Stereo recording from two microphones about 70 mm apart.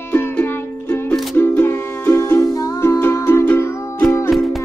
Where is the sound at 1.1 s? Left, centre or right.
Centre.